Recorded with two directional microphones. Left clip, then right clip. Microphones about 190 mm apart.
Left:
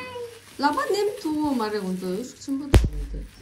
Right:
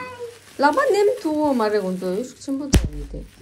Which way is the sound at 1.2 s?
10° left (ahead or behind).